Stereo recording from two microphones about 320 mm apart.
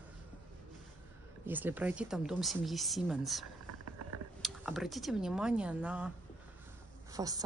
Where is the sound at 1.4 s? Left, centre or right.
Centre.